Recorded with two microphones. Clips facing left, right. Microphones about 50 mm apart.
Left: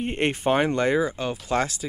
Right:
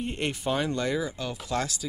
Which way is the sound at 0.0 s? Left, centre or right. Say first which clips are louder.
Left 6 dB; left.